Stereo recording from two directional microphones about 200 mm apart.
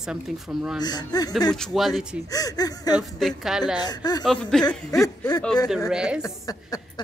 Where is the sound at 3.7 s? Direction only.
20° left (ahead or behind).